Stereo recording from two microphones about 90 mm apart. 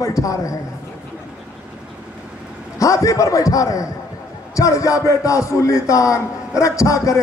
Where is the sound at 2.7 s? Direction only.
35° left (ahead or behind).